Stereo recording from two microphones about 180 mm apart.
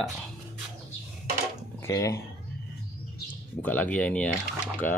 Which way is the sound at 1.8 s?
15° left (ahead or behind).